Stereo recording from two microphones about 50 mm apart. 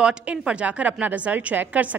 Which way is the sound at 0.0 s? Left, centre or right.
Right.